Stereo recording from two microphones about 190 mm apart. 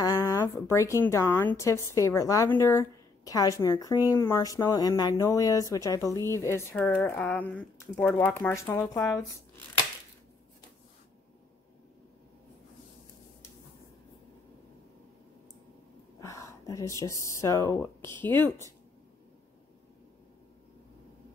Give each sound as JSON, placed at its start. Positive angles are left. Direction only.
{"t": 0.0, "sound": "speech", "side_deg": 20}
{"t": 16.2, "sound": "a sound", "side_deg": 15}
{"t": 17.0, "sound": "speech", "side_deg": 15}